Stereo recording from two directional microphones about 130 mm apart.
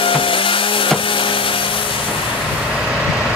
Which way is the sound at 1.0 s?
40° left (ahead or behind).